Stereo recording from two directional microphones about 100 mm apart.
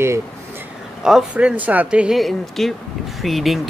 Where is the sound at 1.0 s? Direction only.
10° right (ahead or behind).